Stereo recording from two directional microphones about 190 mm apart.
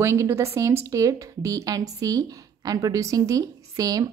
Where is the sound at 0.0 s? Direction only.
15° right (ahead or behind).